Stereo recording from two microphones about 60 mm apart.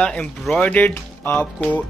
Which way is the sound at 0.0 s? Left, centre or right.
Centre.